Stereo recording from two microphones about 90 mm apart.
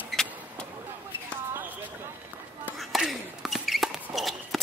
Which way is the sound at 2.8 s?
Centre (ahead or behind).